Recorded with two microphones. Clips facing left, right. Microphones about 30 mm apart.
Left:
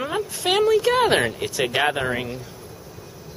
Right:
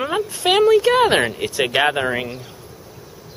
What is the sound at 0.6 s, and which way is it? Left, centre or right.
Speech, centre.